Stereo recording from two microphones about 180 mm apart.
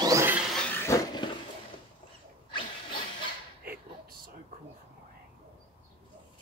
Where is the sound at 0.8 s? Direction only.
20° left (ahead or behind).